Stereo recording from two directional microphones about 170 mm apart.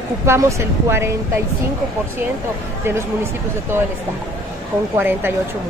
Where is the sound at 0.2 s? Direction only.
15° right (ahead or behind).